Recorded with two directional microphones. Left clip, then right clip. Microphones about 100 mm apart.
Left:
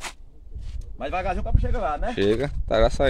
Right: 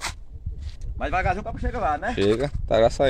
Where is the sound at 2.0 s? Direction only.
10° left (ahead or behind).